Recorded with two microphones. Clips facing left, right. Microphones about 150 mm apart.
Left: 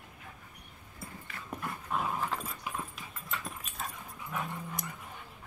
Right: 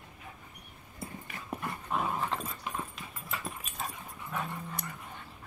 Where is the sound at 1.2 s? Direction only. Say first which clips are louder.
Right 1 dB; 20° right (ahead or behind).